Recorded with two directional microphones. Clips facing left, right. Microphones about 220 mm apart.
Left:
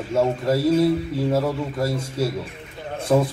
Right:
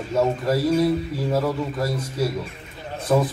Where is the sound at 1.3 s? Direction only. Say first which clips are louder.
Right 1 dB; 25° left (ahead or behind).